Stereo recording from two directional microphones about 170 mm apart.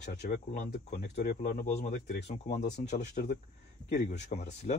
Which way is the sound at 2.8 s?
45° left (ahead or behind).